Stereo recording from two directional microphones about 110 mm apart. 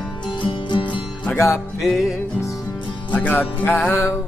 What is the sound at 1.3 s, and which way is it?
Music, 25° left (ahead or behind).